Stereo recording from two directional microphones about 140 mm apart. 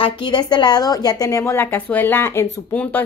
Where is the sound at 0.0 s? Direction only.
35° left (ahead or behind).